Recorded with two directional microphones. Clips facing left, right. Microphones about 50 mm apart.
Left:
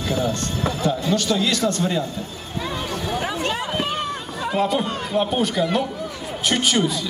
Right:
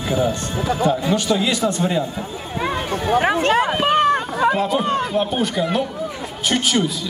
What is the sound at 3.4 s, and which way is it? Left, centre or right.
Speech, right.